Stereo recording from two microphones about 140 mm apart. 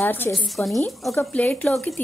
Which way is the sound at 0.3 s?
Centre (ahead or behind).